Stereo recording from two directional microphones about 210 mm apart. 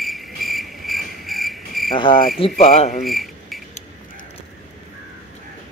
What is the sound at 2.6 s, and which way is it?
Speech, 35° left (ahead or behind).